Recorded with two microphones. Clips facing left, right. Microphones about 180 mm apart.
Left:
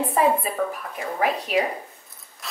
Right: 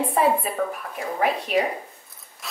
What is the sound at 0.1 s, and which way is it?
Speech, centre (ahead or behind).